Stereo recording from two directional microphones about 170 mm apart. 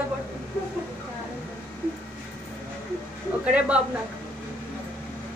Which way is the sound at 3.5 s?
5° right (ahead or behind).